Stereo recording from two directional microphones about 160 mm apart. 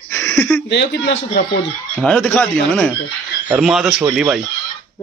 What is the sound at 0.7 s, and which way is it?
Speech, 90° left.